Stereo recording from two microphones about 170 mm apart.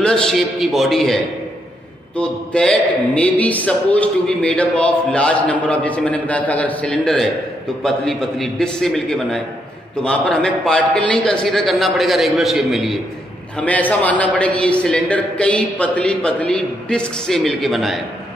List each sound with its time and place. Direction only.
0.0 s a man's voice: 5° left (ahead or behind)